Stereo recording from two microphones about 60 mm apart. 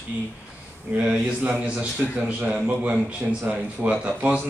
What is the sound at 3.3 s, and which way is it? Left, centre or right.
A man's voice, right.